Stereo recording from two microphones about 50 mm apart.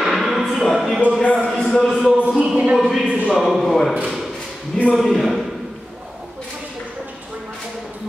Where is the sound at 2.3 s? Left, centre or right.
Right.